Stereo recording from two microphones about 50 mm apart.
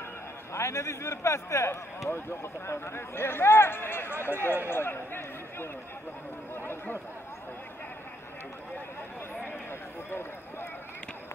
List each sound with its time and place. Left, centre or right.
0.5 s a man's voice: left
2.0 s speech: left
9.7 s a sound: left